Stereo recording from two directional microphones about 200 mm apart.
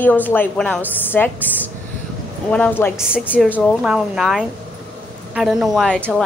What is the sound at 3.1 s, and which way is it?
A woman's voice, 5° right (ahead or behind).